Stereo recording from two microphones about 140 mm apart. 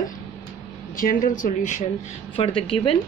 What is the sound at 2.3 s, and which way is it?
Speech, 40° left (ahead or behind).